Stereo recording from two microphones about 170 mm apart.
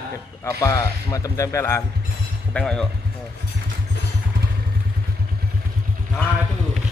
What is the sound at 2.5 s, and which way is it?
Speech, 5° left (ahead or behind).